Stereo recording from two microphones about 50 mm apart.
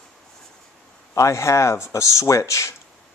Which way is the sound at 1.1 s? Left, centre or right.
Left.